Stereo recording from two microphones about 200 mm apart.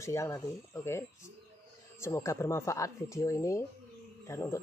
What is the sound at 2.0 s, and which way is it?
Speech, 15° left (ahead or behind).